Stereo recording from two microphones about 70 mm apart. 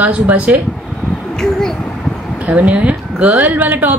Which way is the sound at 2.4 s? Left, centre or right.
Centre.